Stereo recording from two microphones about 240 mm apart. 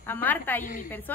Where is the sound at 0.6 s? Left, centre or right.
Left.